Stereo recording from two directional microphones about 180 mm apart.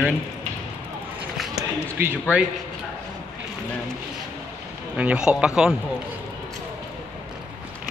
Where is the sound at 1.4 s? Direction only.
5° right (ahead or behind).